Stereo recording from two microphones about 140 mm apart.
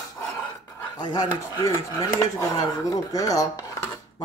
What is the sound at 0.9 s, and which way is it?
Speech, 30° left (ahead or behind).